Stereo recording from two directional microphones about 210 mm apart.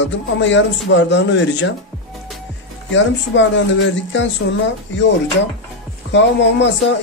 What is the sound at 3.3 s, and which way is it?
A man's voice, 60° left (ahead or behind).